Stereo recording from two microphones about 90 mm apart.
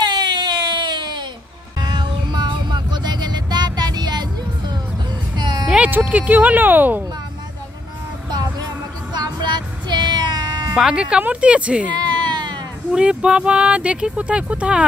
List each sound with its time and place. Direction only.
0.0 s a sound: 55° right (ahead or behind)
1.8 s music: 55° right (ahead or behind)
5.3 s vehicle: 55° right (ahead or behind)
5.7 s speech: 15° right (ahead or behind)
8.3 s music: 45° right (ahead or behind)
10.7 s speech: 10° right (ahead or behind)
12.3 s a sound: 55° right (ahead or behind)
12.9 s speech: 10° right (ahead or behind)